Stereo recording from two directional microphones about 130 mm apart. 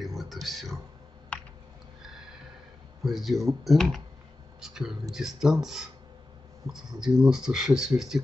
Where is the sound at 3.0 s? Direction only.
Centre (ahead or behind).